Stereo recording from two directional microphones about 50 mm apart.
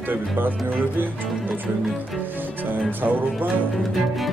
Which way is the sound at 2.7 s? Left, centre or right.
Right.